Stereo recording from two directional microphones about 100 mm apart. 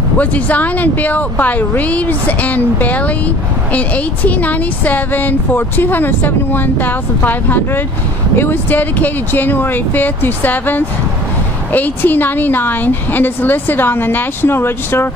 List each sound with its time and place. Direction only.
0.2 s a woman's voice: 15° left (ahead or behind)